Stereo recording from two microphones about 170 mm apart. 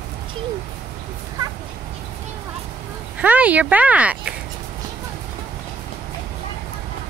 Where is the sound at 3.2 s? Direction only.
10° right (ahead or behind).